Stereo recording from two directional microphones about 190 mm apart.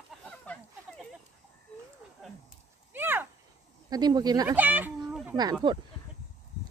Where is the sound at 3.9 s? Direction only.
20° right (ahead or behind).